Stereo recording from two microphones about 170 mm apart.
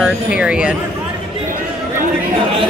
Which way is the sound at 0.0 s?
5° right (ahead or behind).